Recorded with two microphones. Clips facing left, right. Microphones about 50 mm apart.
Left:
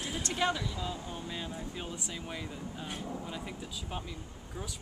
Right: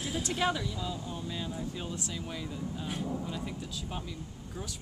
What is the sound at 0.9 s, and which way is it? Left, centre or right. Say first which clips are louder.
Speech: right 2 dB; centre.